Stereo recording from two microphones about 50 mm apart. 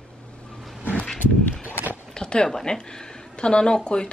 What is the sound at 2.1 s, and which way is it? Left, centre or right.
Speech, centre.